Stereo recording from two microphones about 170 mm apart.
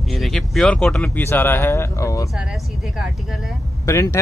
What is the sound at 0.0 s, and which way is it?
Speech, centre (ahead or behind).